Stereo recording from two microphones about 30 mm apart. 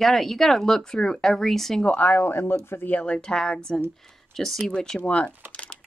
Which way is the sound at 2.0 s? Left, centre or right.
Left.